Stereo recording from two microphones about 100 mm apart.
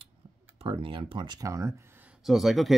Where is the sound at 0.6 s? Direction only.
60° right (ahead or behind); by 1.7 s 35° right (ahead or behind).